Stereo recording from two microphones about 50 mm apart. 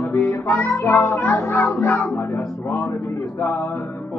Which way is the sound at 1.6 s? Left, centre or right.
Left.